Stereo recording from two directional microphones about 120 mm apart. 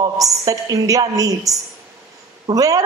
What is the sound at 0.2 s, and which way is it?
A woman's voice, 30° right (ahead or behind).